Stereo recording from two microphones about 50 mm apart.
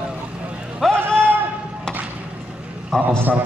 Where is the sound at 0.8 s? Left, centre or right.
Centre.